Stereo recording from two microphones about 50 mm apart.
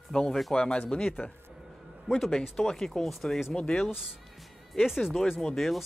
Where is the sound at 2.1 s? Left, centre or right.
Centre.